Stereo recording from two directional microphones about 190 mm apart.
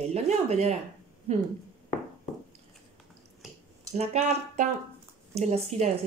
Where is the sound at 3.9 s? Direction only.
35° right (ahead or behind).